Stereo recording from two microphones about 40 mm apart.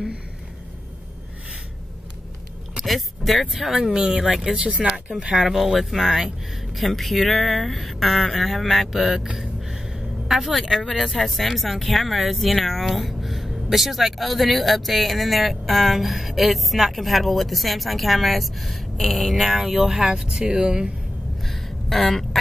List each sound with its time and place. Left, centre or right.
2.8 s a sound: centre
3.5 s speech: centre
3.9 s speech: centre
4.6 s speech: right
5.4 s speech: centre
9.4 s a sound: centre
10.9 s speech: centre
20.1 s speech: centre
21.5 s a sound: centre